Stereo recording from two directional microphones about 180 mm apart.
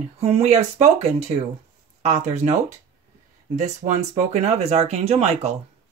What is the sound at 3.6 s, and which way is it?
Speech, 40° right (ahead or behind).